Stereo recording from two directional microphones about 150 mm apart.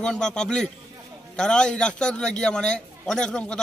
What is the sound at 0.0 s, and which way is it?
A man's voice, 5° left (ahead or behind).